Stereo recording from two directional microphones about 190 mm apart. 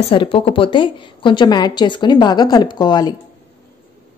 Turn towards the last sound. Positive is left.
turn(degrees=20)  # may be behind; listen again after turning